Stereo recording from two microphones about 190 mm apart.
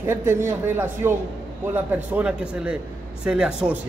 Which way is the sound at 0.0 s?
15° right (ahead or behind).